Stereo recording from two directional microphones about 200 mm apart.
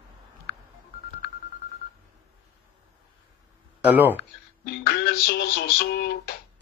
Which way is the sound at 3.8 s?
10° right (ahead or behind).